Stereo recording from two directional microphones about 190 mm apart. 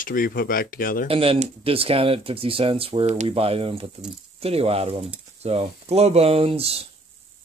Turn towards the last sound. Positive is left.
turn(degrees=-30)  # may be behind; listen again after turning